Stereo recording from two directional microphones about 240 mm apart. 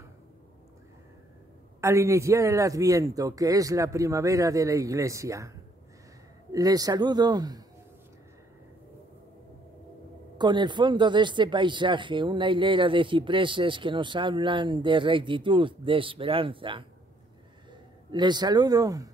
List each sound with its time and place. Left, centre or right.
1.8 s a man's voice: centre
6.5 s a man's voice: centre
10.3 s a man's voice: centre
18.1 s a man's voice: centre